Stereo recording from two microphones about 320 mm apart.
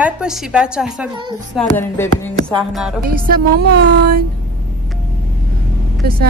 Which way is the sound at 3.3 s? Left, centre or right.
Right.